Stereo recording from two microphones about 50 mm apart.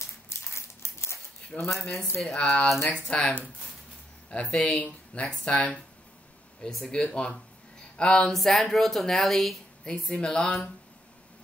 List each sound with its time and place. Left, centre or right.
0.0 s a sound: left
1.6 s speech: left
2.2 s speech: left
6.9 s a woman's voice: centre